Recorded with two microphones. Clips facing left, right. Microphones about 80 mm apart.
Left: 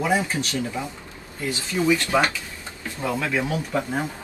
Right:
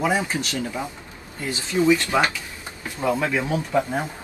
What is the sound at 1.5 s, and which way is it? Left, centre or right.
Speech, right.